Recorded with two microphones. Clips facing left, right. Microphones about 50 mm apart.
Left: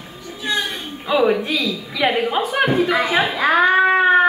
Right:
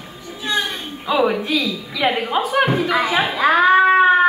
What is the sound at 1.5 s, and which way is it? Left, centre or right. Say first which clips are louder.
A woman's voice: right 1 dB; centre.